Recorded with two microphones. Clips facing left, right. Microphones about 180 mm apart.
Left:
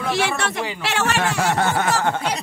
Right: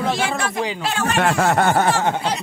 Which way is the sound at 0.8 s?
75° left (ahead or behind).